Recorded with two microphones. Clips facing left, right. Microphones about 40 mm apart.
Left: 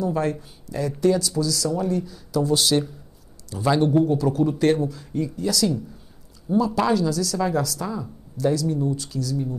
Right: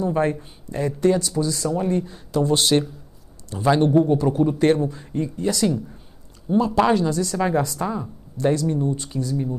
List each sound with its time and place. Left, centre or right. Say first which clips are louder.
0.0 s a woman's voice: right 2 dB; right